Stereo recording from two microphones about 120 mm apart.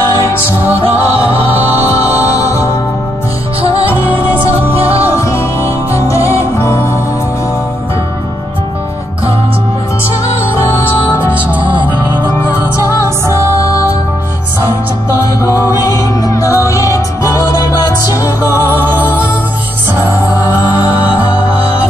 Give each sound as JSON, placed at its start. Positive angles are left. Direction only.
{"t": 0.1, "sound": "music", "side_deg": 20}
{"t": 2.1, "sound": "music", "side_deg": 30}
{"t": 3.8, "sound": "music", "side_deg": 20}
{"t": 10.7, "sound": "music", "side_deg": 20}
{"t": 12.5, "sound": "music", "side_deg": -20}
{"t": 15.1, "sound": "music", "side_deg": 25}
{"t": 18.4, "sound": "music", "side_deg": -15}